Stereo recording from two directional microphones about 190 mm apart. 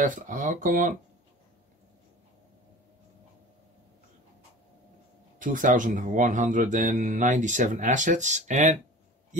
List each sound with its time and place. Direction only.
0.0 s speech: 45° right (ahead or behind)
5.4 s speech: 45° right (ahead or behind)